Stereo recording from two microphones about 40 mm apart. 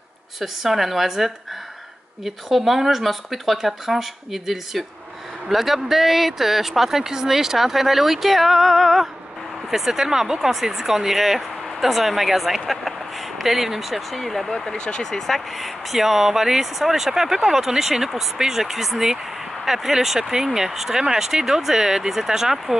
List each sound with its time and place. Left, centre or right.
0.4 s speech: centre
9.7 s speech: centre
14.7 s speech: left
15.3 s speech: centre